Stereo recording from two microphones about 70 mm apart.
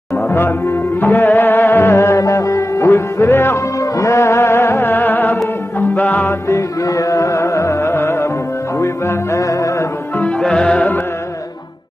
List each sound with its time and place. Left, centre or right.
0.3 s music: left
2.0 s music: left
3.5 s music: left
4.8 s music: left
6.2 s music: left
10.1 s music: centre
10.7 s music: left